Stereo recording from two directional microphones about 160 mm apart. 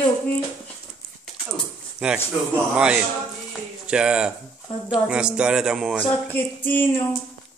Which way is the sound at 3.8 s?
5° right (ahead or behind).